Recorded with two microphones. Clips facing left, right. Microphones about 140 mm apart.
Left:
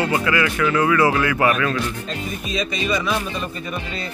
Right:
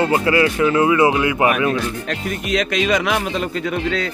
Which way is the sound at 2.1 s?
85° right.